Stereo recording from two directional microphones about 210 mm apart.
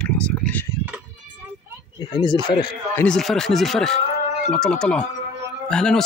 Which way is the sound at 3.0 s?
5° left (ahead or behind).